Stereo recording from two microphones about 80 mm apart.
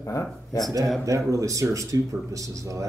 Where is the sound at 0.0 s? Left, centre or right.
Left.